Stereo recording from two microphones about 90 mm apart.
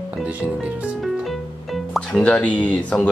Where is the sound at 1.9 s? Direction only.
10° left (ahead or behind).